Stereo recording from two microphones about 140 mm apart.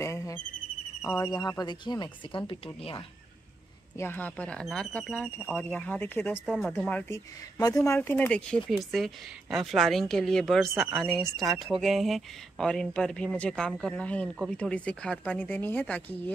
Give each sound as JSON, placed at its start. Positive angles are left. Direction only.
{"t": 0.0, "sound": "insect", "side_deg": 20}
{"t": 1.1, "sound": "speech", "side_deg": 25}
{"t": 4.0, "sound": "speech", "side_deg": 10}
{"t": 6.4, "sound": "speech", "side_deg": -5}
{"t": 6.8, "sound": "speech", "side_deg": 10}
{"t": 7.5, "sound": "speech", "side_deg": 25}